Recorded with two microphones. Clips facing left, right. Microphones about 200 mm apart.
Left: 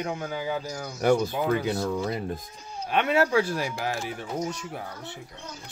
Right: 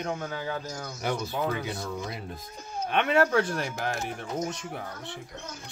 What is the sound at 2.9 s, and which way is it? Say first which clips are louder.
Speech: left 1 dB; 5° left (ahead or behind).